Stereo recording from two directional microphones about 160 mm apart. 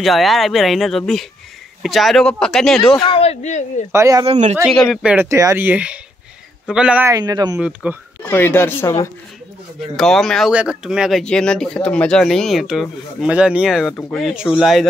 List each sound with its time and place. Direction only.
0.0 s speech: centre (ahead or behind)
3.0 s speech: 35° left (ahead or behind)
3.9 s a man's voice: 20° right (ahead or behind)
4.3 s speech: 45° right (ahead or behind)
4.6 s speech: centre (ahead or behind)
7.1 s a man's voice: 25° right (ahead or behind)
7.6 s speech: 5° right (ahead or behind)
8.2 s speech: 15° left (ahead or behind)
9.8 s speech: centre (ahead or behind)